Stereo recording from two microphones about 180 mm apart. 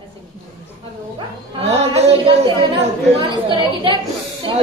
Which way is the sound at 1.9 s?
35° right (ahead or behind).